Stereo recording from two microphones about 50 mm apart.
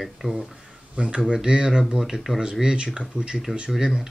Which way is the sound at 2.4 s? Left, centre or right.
Centre.